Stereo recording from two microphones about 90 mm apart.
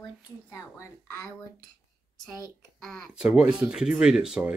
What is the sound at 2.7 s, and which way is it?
Speech, 5° left (ahead or behind).